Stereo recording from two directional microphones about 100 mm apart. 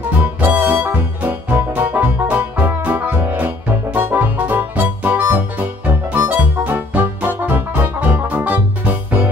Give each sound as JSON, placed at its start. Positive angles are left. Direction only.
{"t": 0.2, "sound": "music", "side_deg": -15}